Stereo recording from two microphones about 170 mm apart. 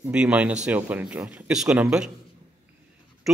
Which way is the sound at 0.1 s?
5° right (ahead or behind).